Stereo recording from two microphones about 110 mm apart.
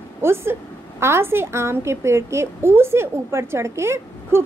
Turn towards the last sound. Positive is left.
turn(degrees=-25)  # may be behind; listen again after turning